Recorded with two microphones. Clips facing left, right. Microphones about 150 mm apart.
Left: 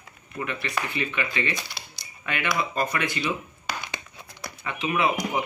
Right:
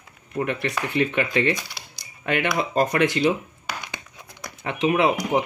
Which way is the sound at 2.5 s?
75° right (ahead or behind).